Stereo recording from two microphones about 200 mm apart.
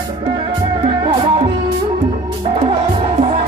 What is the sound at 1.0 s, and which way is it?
Music, 25° right (ahead or behind).